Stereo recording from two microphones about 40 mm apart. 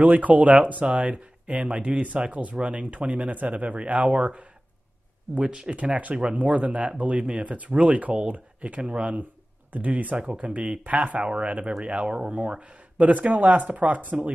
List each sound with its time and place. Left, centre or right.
0.0 s speech: right
12.4 s speech: right